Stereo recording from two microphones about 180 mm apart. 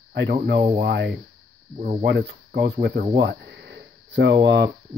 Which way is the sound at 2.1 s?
65° right (ahead or behind).